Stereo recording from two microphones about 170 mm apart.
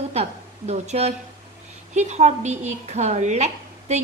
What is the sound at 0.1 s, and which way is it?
A woman's voice, 40° right (ahead or behind).